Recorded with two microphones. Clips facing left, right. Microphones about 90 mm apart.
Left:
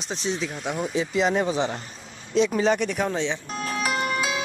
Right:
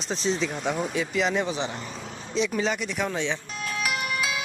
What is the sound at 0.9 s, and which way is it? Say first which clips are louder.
Speech: left 6 dB; 30° left (ahead or behind).